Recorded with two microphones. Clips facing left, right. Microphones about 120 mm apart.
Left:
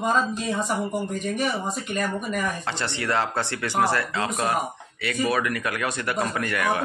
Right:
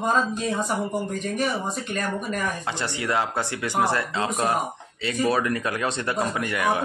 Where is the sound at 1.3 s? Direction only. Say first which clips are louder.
Right 1 dB; centre (ahead or behind).